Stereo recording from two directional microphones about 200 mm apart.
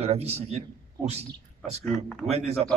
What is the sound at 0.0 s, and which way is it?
A man's voice, 30° right (ahead or behind).